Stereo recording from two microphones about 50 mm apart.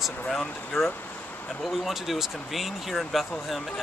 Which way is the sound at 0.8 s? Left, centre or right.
Left.